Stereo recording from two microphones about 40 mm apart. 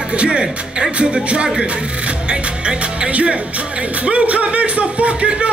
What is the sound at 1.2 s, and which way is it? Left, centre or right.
Music, right.